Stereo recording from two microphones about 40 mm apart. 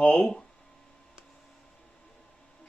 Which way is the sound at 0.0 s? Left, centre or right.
Centre.